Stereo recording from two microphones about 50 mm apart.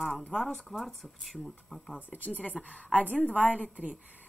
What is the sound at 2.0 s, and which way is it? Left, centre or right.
A woman's voice, left.